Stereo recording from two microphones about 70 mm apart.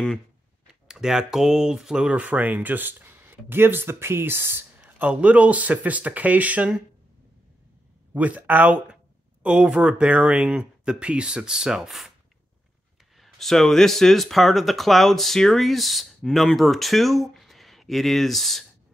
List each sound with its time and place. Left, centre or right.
0.8 s speech: centre
8.1 s speech: right; by 12.1 s centre
13.2 s speech: centre